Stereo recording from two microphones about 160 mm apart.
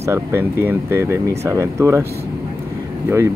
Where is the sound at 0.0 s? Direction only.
15° right (ahead or behind).